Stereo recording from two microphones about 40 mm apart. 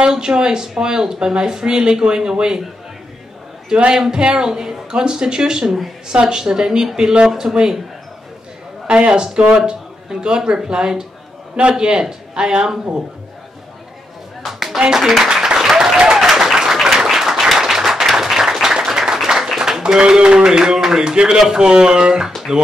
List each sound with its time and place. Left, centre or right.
0.0 s speech: centre
3.6 s a man's voice: centre
8.8 s speech: right
14.4 s clapping: centre
14.8 s speech: centre
15.3 s applause: centre
19.8 s speech: centre